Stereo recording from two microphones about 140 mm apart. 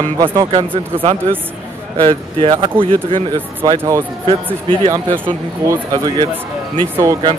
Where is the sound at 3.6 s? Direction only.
25° right (ahead or behind).